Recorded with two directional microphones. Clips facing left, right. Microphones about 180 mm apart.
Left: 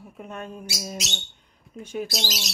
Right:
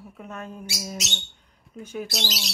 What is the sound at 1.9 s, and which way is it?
Speech, 10° left (ahead or behind).